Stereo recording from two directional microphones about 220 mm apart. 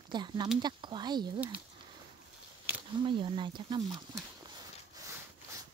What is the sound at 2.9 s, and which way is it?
Speech, 20° right (ahead or behind).